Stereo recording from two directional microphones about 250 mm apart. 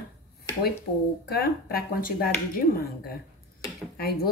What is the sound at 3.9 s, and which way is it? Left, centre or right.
Speech, left.